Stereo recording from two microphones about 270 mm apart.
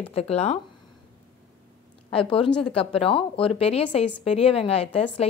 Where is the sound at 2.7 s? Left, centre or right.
Left.